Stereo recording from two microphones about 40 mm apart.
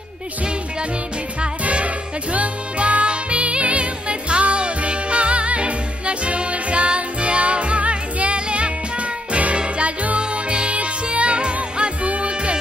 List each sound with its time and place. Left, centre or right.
1.6 s music: right